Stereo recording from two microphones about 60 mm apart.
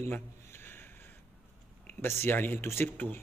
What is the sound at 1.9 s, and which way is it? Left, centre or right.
A man's voice, left.